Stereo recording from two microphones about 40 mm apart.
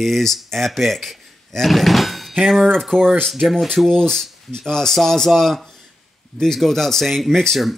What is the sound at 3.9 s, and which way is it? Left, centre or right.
Speech, centre.